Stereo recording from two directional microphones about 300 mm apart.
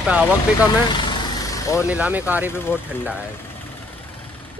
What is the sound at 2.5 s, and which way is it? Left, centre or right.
Speech, centre.